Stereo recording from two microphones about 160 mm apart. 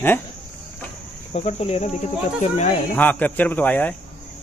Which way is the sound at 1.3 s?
40° left (ahead or behind).